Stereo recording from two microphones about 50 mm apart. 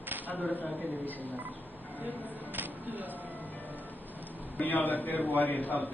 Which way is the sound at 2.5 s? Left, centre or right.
Right.